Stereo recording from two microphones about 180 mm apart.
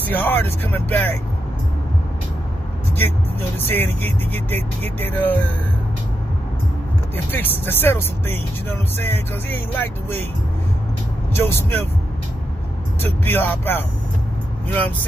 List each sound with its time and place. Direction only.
0.0 s speech: 10° left (ahead or behind)
3.0 s speech: 10° left (ahead or behind)
7.2 s speech: 10° left (ahead or behind)
11.3 s speech: 15° left (ahead or behind)
13.0 s speech: 10° left (ahead or behind)